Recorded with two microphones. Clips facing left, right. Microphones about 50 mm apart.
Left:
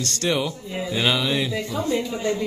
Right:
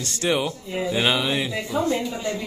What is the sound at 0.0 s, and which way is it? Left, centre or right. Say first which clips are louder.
Speech: even; centre.